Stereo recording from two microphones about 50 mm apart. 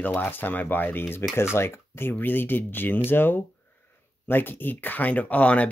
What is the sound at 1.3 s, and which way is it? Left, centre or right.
Speech, left.